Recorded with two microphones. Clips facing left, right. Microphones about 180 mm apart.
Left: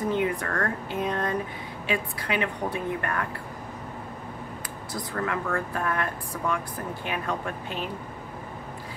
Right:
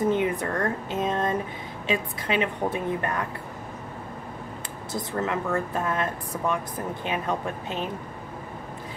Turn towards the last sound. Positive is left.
turn(degrees=-20)  # may be behind; listen again after turning